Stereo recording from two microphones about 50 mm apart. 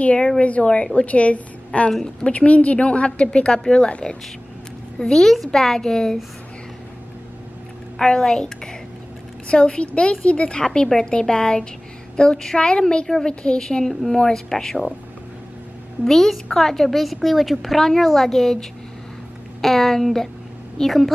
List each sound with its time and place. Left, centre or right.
0.0 s a woman's voice: left
1.9 s a woman's voice: centre
2.2 s a woman's voice: left; by 6.1 s centre
8.0 s a woman's voice: centre
13.3 s a woman's voice: centre
16.0 s a woman's voice: centre